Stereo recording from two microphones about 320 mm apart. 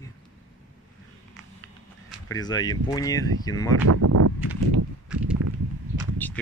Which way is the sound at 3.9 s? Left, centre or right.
Right.